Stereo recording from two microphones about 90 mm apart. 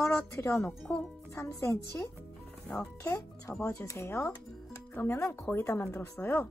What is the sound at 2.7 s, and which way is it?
Speech, 20° left (ahead or behind).